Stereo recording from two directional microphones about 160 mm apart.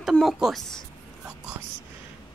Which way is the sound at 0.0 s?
Centre (ahead or behind).